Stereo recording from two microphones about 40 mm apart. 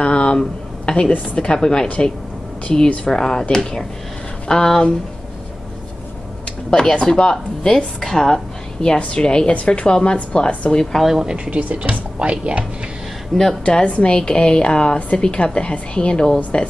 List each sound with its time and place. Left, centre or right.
0.0 s a sound: left
1.3 s a woman's voice: left
3.0 s speech: centre
6.7 s a woman's voice: centre
8.8 s a woman's voice: left
11.1 s speech: centre
11.3 s speech: right
13.3 s a woman's voice: centre
13.7 s a woman's voice: left